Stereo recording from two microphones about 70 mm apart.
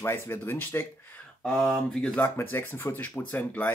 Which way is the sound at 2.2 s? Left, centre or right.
Left.